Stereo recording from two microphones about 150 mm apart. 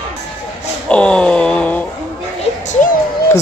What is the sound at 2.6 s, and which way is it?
Music, 55° left (ahead or behind).